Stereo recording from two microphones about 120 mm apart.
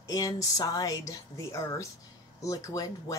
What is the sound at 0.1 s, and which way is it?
Speech, 30° left (ahead or behind).